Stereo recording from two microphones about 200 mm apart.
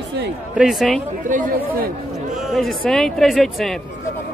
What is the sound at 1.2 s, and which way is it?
Speech, 40° right (ahead or behind).